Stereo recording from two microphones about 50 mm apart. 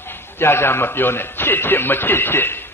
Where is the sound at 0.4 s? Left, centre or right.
Left.